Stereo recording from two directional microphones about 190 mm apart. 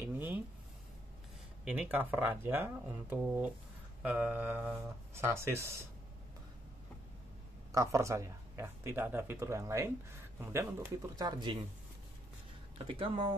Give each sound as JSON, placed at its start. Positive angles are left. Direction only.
{"t": 0.0, "sound": "a sound", "side_deg": -10}
{"t": 1.6, "sound": "speech", "side_deg": -5}
{"t": 7.7, "sound": "speech", "side_deg": -15}
{"t": 12.7, "sound": "speech", "side_deg": -25}